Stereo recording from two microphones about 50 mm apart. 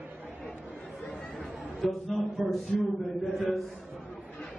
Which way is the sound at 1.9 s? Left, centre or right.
Centre.